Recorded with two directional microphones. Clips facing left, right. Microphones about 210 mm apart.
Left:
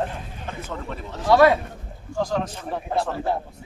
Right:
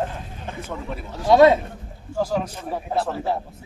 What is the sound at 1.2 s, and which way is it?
Speech, 20° right (ahead or behind).